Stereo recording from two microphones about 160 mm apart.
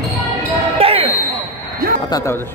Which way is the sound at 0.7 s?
35° right (ahead or behind).